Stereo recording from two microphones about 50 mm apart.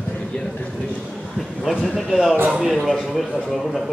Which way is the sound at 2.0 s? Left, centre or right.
Centre.